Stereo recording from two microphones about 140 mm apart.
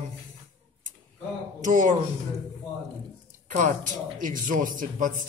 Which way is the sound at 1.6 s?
65° right (ahead or behind).